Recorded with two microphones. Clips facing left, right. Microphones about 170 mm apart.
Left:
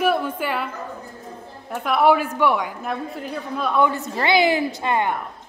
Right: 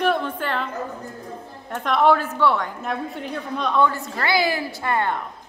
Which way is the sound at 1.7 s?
5° left (ahead or behind).